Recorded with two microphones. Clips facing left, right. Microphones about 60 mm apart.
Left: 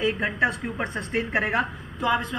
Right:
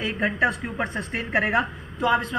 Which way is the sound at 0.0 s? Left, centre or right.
Right.